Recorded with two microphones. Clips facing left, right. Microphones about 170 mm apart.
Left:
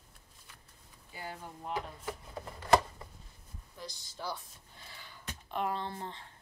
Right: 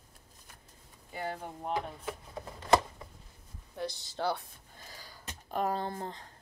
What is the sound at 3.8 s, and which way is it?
Gasp, 65° right (ahead or behind).